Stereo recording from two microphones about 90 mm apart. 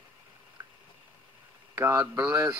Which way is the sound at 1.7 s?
30° right (ahead or behind).